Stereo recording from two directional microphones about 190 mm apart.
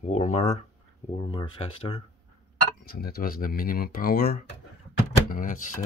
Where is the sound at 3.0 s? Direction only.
50° left (ahead or behind).